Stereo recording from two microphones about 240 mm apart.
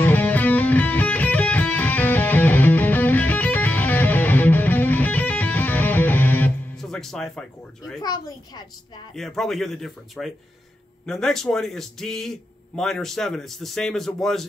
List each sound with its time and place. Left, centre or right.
0.0 s music: centre
8.0 s a child's voice: centre
9.1 s a man's voice: centre